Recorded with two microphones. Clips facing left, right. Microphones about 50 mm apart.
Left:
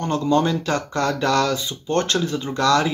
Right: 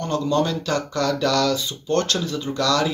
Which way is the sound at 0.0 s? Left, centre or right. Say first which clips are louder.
Left 2 dB; left.